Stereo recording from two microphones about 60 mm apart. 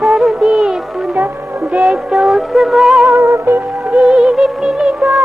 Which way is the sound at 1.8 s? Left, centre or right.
Centre.